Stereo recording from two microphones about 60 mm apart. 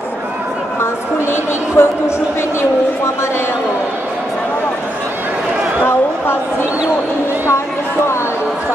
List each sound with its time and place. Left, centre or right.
1.3 s speech: left